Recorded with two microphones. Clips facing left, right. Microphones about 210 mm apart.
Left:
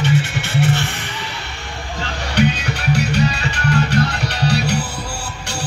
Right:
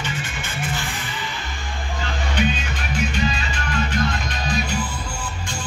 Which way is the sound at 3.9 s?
75° left (ahead or behind).